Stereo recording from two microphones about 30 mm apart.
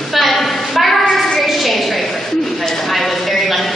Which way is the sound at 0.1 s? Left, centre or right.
Centre.